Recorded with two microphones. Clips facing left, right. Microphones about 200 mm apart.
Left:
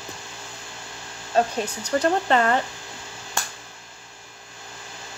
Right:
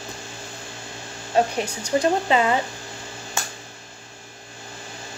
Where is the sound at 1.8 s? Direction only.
10° right (ahead or behind).